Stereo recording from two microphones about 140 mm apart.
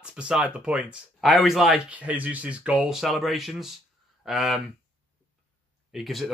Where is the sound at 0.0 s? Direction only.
5° right (ahead or behind).